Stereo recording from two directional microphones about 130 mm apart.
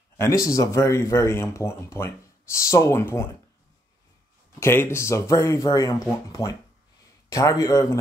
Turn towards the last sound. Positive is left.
turn(degrees=25)  # may be behind; listen again after turning